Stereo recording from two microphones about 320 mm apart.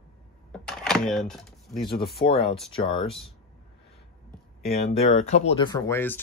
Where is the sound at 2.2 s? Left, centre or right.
Left.